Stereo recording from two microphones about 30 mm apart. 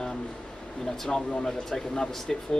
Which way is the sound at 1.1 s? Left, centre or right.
Left.